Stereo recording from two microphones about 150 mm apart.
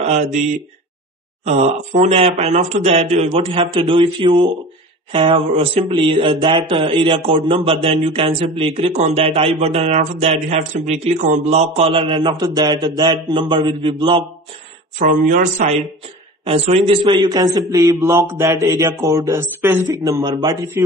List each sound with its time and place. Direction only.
0.0 s speech: 45° right (ahead or behind)
1.4 s a man's voice: 50° right (ahead or behind)
15.0 s speech: 60° right (ahead or behind)
16.4 s a man's voice: 45° right (ahead or behind); by 20.9 s 15° right (ahead or behind)